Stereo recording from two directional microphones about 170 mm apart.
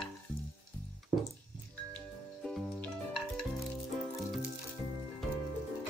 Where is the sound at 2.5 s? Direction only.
Centre (ahead or behind).